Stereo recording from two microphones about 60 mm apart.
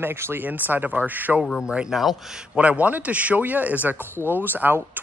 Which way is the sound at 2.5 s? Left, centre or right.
Right.